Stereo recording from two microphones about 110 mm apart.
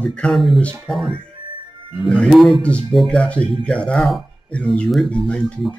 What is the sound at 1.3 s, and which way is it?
Music, 50° right (ahead or behind).